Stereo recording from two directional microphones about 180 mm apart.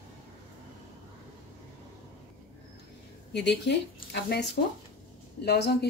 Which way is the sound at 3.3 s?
70° left (ahead or behind).